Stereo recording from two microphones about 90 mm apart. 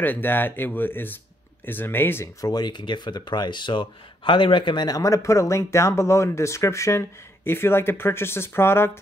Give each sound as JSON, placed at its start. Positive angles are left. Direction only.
{"t": 0.0, "sound": "speech", "side_deg": 20}
{"t": 2.4, "sound": "speech", "side_deg": 50}
{"t": 4.8, "sound": "speech", "side_deg": 40}